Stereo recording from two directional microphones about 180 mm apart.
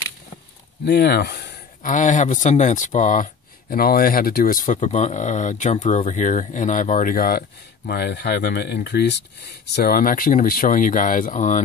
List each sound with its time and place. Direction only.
0.8 s speech: 65° left (ahead or behind)
1.8 s speech: 45° left (ahead or behind)
3.7 s speech: 55° left (ahead or behind)
9.8 s speech: 55° left (ahead or behind)